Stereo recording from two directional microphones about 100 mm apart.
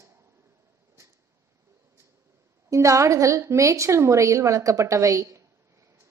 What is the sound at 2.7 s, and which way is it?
A woman's voice, 30° right (ahead or behind).